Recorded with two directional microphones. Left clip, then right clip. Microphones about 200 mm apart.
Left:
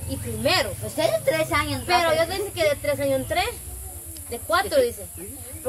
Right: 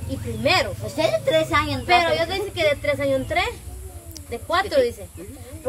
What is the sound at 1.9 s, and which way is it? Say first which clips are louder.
Speech: right 2 dB; centre (ahead or behind).